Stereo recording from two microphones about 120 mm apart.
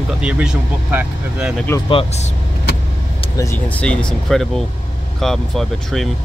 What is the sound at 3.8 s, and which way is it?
Speech, 10° left (ahead or behind).